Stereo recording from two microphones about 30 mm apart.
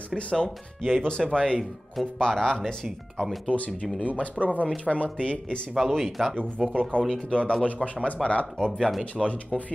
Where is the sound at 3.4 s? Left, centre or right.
Left.